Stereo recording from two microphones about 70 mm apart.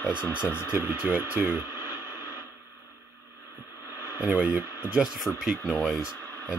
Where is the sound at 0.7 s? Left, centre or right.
Right.